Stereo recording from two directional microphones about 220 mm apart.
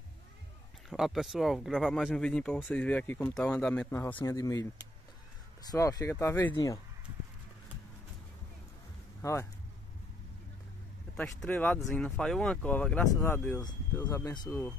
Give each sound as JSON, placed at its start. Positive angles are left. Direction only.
{"t": 0.8, "sound": "speech", "side_deg": 0}
{"t": 5.6, "sound": "speech", "side_deg": 15}
{"t": 9.2, "sound": "speech", "side_deg": 15}
{"t": 11.1, "sound": "speech", "side_deg": 5}